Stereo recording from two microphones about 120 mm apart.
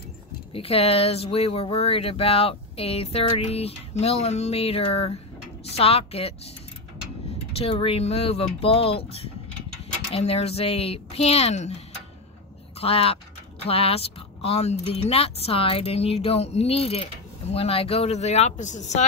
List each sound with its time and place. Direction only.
0.5 s speech: 55° left (ahead or behind)
7.5 s speech: 55° left (ahead or behind)
12.8 s speech: 55° left (ahead or behind); by 19.0 s 80° left